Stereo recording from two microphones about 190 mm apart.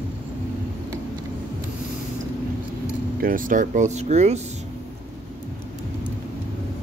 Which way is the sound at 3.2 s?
45° right (ahead or behind).